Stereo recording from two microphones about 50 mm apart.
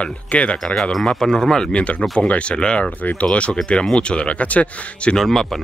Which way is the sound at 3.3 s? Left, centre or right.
Left.